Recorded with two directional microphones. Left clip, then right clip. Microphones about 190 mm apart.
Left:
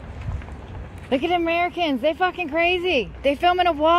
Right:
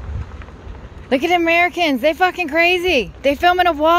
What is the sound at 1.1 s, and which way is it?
Speech, 25° right (ahead or behind).